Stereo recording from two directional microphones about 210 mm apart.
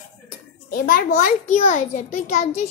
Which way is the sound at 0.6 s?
40° left (ahead or behind).